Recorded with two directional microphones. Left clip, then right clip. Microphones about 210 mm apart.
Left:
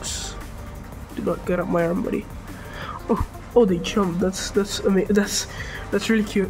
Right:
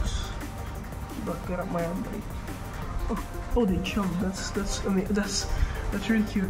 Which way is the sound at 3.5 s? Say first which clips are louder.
Left 9 dB; 50° left (ahead or behind).